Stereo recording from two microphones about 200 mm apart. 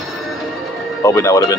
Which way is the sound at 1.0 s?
15° left (ahead or behind).